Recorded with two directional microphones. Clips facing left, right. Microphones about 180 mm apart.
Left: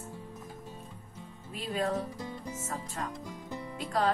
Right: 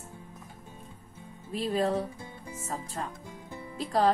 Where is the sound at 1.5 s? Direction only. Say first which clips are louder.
Right 4 dB; 30° right (ahead or behind).